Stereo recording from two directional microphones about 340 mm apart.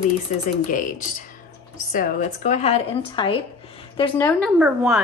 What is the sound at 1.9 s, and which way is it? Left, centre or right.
Speech, left.